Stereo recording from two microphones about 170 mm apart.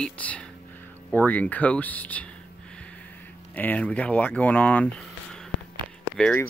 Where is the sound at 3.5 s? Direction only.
10° left (ahead or behind).